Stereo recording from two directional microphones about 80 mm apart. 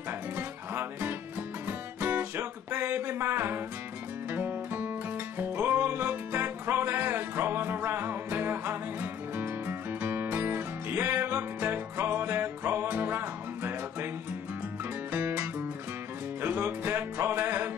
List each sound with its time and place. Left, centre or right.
0.4 s music: right
15.1 s music: centre